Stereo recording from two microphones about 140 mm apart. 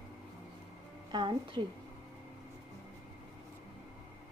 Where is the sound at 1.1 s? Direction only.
35° right (ahead or behind).